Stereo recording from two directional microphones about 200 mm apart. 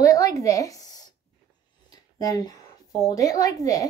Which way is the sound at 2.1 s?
20° left (ahead or behind).